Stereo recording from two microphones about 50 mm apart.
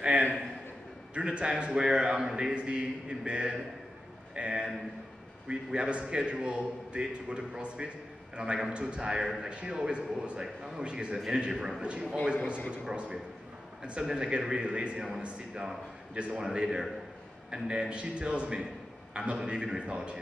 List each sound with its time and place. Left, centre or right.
0.0 s a sound: centre
1.1 s a man's voice: centre
12.8 s a man's voice: centre